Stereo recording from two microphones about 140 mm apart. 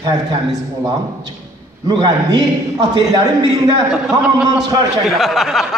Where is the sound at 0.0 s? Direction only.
25° right (ahead or behind).